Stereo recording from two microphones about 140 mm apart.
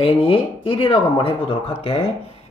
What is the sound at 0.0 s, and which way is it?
Speech, 40° left (ahead or behind).